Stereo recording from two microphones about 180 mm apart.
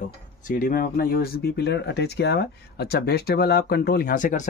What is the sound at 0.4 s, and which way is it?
Speech, 50° left (ahead or behind).